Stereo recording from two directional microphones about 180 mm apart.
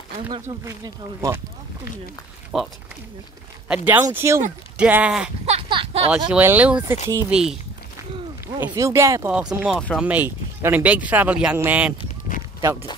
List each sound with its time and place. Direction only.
0.3 s speech: 25° right (ahead or behind)
2.5 s speech: 5° right (ahead or behind)
5.5 s a sound: 30° right (ahead or behind)
6.0 s speech: 5° right (ahead or behind)
8.5 s speech: 15° right (ahead or behind)
9.3 s speech: 5° right (ahead or behind)
10.0 s speech: 10° right (ahead or behind)